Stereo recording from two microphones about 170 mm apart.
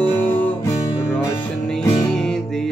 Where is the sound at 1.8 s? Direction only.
20° left (ahead or behind).